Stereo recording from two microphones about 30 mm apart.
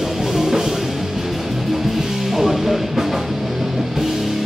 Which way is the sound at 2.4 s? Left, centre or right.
Centre.